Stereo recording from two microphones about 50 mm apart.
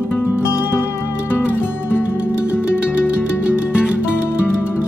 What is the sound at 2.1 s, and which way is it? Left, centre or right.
Music, right.